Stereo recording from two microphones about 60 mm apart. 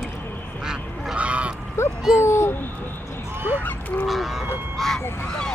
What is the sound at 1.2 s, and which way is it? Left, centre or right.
Goose, right.